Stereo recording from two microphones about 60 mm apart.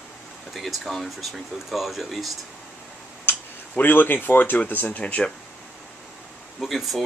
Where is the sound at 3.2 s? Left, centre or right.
Left.